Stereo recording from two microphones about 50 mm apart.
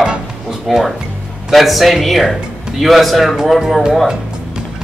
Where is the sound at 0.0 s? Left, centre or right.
Centre.